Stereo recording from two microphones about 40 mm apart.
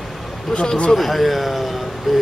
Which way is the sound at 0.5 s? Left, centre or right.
Left.